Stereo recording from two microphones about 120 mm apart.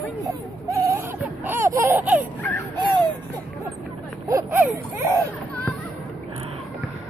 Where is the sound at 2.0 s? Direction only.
15° right (ahead or behind).